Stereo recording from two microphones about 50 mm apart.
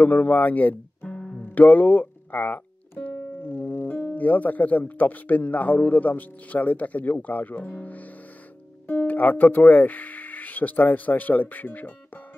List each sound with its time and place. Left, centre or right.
0.0 s speech: left
1.0 s music: centre
1.4 s music: left
4.1 s speech: left